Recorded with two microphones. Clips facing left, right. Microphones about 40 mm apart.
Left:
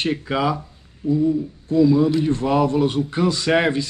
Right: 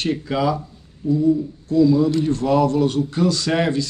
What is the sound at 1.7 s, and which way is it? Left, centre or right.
A man's voice, left.